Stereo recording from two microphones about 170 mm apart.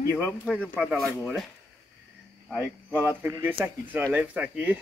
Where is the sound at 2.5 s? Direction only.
10° left (ahead or behind).